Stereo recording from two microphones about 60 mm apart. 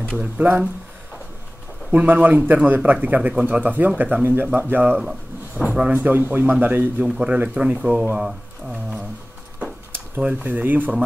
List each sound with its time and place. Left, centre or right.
0.2 s a man's voice: right
1.9 s a man's voice: right
5.7 s a man's voice: centre
5.9 s a man's voice: right
7.0 s a man's voice: centre
9.6 s a sound: right
10.2 s a man's voice: right